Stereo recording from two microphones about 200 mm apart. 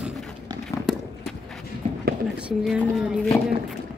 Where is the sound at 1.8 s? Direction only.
30° right (ahead or behind).